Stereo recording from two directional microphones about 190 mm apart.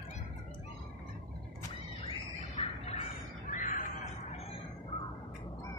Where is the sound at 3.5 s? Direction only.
45° left (ahead or behind).